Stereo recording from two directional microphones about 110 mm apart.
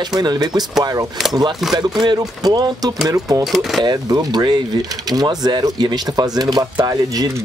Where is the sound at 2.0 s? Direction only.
35° right (ahead or behind).